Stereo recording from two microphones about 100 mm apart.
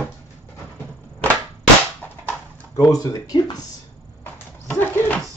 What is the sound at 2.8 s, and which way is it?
Speech, 35° left (ahead or behind).